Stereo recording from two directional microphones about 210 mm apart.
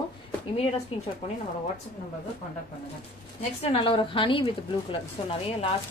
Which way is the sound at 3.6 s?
25° left (ahead or behind).